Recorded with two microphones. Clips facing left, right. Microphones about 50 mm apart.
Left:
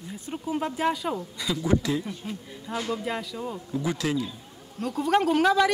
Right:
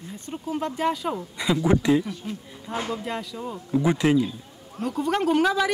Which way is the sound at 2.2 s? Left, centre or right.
Centre.